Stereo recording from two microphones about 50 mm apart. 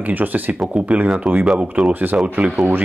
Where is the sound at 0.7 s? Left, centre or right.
Centre.